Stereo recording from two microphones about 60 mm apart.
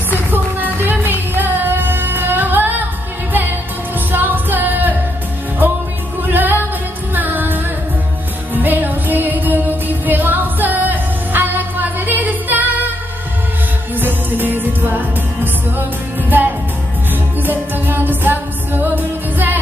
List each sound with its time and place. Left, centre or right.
0.3 s music: right
4.1 s music: right
6.2 s music: right
13.9 s music: right